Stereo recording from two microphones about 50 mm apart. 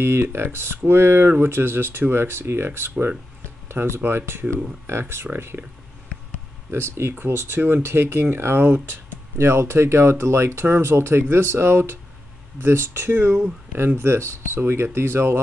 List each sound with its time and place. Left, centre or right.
0.0 s speech: right
6.7 s speech: right